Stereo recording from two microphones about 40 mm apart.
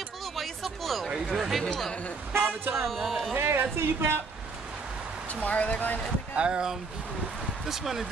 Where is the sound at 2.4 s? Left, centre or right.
Right.